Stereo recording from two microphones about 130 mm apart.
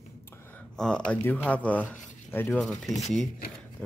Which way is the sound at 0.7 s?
5° left (ahead or behind).